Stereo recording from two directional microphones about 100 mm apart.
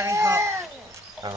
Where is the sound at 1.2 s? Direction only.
40° right (ahead or behind).